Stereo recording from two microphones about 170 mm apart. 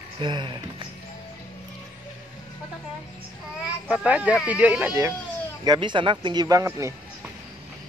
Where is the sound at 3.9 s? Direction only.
5° right (ahead or behind).